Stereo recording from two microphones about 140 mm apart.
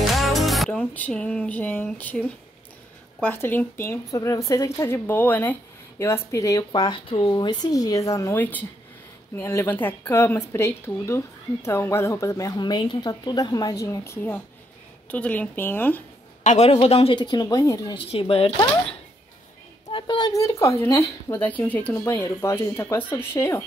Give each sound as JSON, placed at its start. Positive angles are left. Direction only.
{"t": 0.0, "sound": "music", "side_deg": 0}
{"t": 3.2, "sound": "a woman's voice", "side_deg": 15}
{"t": 16.4, "sound": "a man's voice", "side_deg": 50}
{"t": 17.2, "sound": "speech", "side_deg": 30}
{"t": 17.9, "sound": "a man's voice", "side_deg": 40}
{"t": 19.9, "sound": "a woman's voice", "side_deg": 35}